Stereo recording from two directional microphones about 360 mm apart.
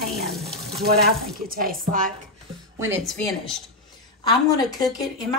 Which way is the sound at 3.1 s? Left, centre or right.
Centre.